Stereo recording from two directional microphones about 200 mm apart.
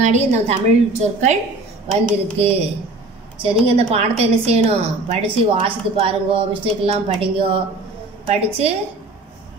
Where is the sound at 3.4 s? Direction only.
30° right (ahead or behind).